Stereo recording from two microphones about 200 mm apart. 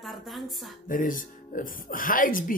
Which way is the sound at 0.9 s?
40° left (ahead or behind).